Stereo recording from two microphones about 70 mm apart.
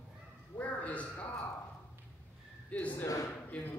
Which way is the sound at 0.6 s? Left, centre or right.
Centre.